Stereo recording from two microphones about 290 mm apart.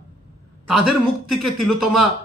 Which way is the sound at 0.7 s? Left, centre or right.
Right.